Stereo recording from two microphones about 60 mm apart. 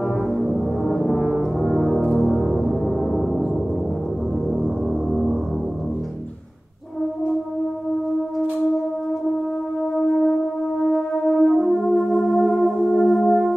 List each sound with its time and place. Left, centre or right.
0.4 s brass instrument: centre
2.2 s music: centre
10.2 s brass instrument: centre